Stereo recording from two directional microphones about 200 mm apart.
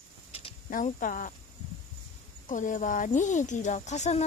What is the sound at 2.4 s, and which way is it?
Speech, 40° left (ahead or behind).